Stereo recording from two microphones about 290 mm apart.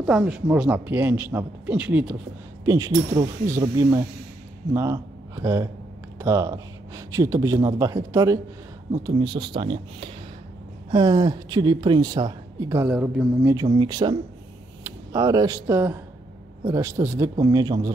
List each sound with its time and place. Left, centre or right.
0.0 s a man's voice: centre